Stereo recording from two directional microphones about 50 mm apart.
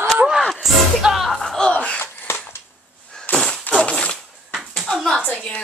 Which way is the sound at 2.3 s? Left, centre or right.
Left.